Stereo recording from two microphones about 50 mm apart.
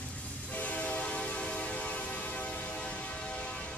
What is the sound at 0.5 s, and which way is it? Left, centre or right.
Train, left.